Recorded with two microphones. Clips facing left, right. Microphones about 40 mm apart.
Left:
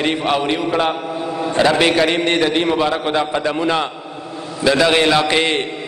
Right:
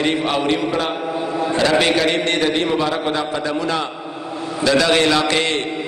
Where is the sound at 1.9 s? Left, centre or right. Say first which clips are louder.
Left 2 dB; centre.